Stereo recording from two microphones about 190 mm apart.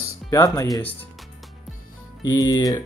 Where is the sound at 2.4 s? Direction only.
20° left (ahead or behind).